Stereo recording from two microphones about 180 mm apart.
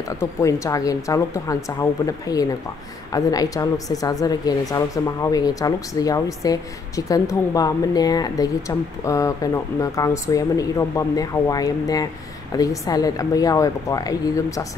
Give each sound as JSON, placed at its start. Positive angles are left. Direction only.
{"t": 0.1, "sound": "a woman's voice", "side_deg": 15}